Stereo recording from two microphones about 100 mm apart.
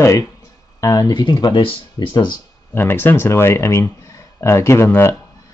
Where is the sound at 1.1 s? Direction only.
45° left (ahead or behind).